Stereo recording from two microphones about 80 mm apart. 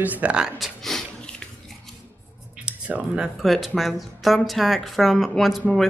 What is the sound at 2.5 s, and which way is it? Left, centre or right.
Speech, centre.